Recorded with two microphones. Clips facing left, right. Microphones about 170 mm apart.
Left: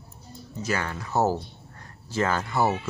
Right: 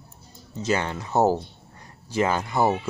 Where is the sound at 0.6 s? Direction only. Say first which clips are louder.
Right 4 dB; 25° right (ahead or behind).